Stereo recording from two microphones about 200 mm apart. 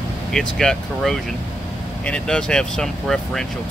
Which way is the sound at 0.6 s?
Centre (ahead or behind).